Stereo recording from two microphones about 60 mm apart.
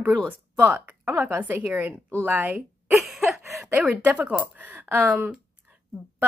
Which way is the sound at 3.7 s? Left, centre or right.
Right.